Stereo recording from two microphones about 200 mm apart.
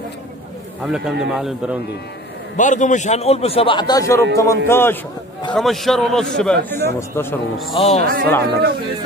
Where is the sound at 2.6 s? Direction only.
40° left (ahead or behind); by 5.0 s 10° left (ahead or behind).